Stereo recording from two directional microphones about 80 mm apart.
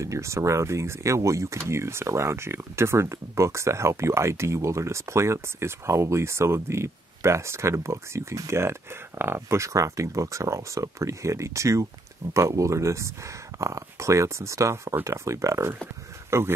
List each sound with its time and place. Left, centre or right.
0.0 s speech: right